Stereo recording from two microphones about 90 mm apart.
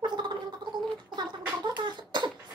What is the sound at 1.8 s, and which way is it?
Cough, 55° right (ahead or behind).